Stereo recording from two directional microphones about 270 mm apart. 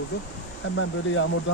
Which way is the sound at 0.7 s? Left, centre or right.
Left.